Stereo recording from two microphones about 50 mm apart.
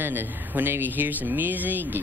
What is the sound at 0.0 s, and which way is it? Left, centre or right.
Speech, right.